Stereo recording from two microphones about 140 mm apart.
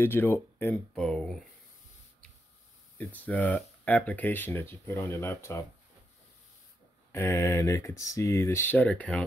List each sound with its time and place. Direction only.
0.0 s speech: 15° left (ahead or behind)
0.9 s speech: 5° left (ahead or behind)
3.0 s speech: 10° left (ahead or behind)
7.1 s speech: 20° left (ahead or behind)